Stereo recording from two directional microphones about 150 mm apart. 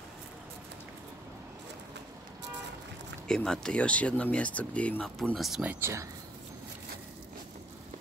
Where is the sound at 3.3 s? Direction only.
5° left (ahead or behind); by 6.0 s 15° right (ahead or behind).